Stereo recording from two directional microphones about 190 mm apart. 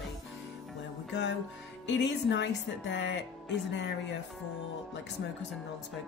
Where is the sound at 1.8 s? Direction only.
65° left (ahead or behind).